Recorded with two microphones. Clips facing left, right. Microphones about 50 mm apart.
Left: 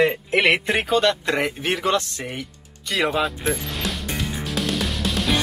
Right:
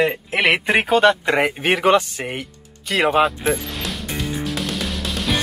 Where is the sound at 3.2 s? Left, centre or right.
Centre.